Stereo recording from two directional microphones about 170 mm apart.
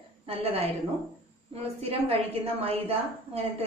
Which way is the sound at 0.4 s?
35° right (ahead or behind).